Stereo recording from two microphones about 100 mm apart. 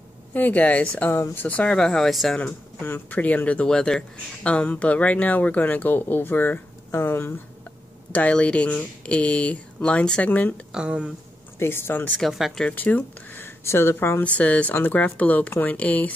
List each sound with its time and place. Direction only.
0.3 s speech: 15° left (ahead or behind); by 2.4 s centre (ahead or behind)
2.4 s speech: 20° left (ahead or behind)
10.7 s speech: 10° right (ahead or behind)
11.6 s speech: 25° left (ahead or behind)
12.2 s speech: centre (ahead or behind)
12.6 s speech: 15° left (ahead or behind)